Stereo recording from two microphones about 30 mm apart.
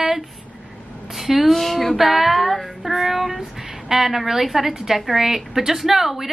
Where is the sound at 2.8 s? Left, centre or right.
Centre.